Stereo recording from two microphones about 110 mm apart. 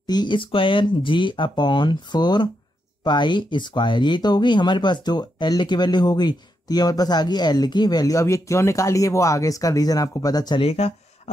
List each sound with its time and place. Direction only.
0.0 s speech: 40° left (ahead or behind)
10.6 s speech: 65° left (ahead or behind)